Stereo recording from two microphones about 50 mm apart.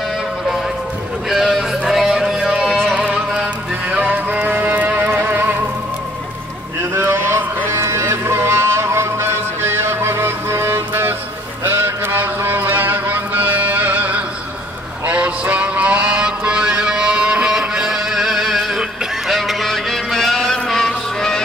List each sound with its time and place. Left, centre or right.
1.3 s music: centre
2.7 s music: centre
4.0 s music: right
6.9 s a sound: right
7.7 s music: right
11.6 s a sound: right
12.4 s music: right; by 17.9 s centre
17.9 s music: centre
19.2 s honk: centre
20.4 s music: centre